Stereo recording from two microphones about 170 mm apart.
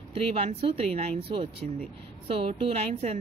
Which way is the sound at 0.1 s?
35° right (ahead or behind).